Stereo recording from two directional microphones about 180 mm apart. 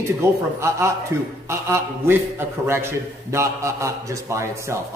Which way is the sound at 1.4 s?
15° right (ahead or behind).